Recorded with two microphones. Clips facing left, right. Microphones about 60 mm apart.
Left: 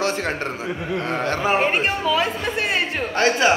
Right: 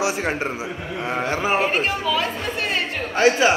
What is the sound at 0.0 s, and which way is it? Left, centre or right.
A man's voice, centre.